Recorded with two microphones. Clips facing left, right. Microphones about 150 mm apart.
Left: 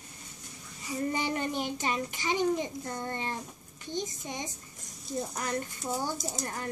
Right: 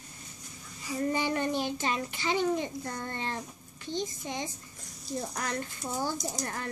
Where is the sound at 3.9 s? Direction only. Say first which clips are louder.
Right 1 dB; 15° left (ahead or behind).